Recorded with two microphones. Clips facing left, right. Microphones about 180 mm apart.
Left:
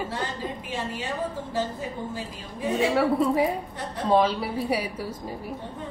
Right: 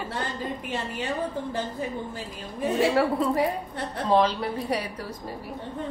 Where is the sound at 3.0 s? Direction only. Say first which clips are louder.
Left 1 dB; centre (ahead or behind).